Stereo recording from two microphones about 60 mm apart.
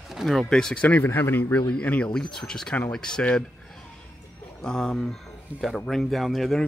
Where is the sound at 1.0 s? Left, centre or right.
Left.